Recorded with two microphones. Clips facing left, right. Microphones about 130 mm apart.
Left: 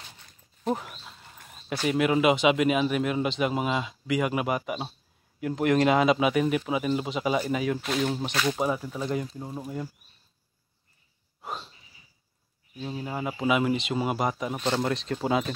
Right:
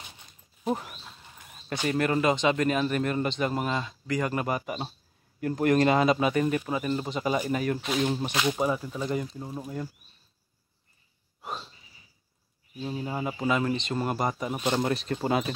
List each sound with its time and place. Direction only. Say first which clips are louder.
0.7 s a sound: left 1 dB; 5° right (ahead or behind)
1.7 s speech: left 2 dB; 5° left (ahead or behind)
8.3 s speech: even; 15° right (ahead or behind)
8.5 s speech: even; 5° left (ahead or behind)
12.8 s speech: right 1 dB; centre (ahead or behind)